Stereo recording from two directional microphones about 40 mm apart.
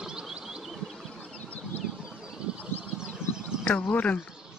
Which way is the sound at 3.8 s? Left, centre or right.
Left.